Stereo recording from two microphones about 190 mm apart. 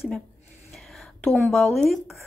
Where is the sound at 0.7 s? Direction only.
Centre (ahead or behind).